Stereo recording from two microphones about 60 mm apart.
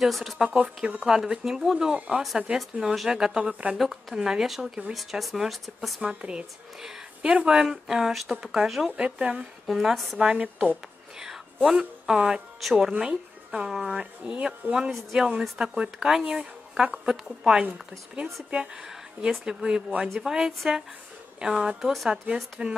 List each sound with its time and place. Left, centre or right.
0.0 s speech: centre
0.8 s a woman's voice: centre
6.0 s a woman's voice: centre
8.9 s speech: centre
9.7 s speech: centre
10.2 s a woman's voice: centre
11.1 s a sound: centre
12.1 s a woman's voice: centre